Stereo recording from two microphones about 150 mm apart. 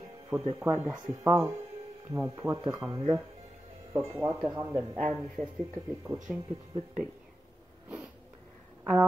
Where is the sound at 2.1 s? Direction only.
20° right (ahead or behind).